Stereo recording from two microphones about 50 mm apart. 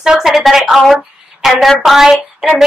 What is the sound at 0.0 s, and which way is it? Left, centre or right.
A woman's voice, centre.